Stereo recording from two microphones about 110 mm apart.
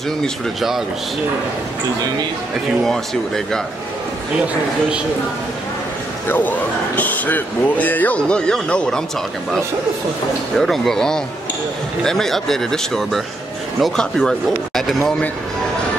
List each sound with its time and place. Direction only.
0.2 s speech: centre (ahead or behind)
2.8 s speech: 5° left (ahead or behind)
6.2 s speech: 15° left (ahead or behind)
10.6 s speech: 5° left (ahead or behind)